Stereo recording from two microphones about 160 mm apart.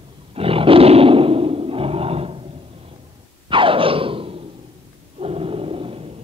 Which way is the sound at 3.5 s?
35° right (ahead or behind).